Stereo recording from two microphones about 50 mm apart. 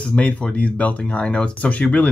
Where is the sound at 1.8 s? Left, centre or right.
Left.